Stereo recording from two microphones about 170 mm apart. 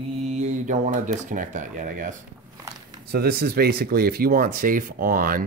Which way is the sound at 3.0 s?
65° right (ahead or behind).